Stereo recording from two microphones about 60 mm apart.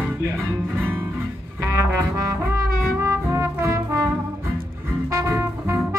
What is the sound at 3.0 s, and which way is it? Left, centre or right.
Music, right.